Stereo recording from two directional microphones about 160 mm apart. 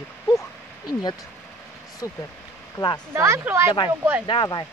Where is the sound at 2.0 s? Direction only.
20° left (ahead or behind).